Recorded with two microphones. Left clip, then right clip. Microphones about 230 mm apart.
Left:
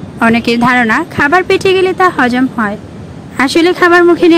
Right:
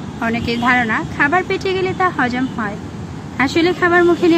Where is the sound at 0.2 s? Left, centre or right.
Left.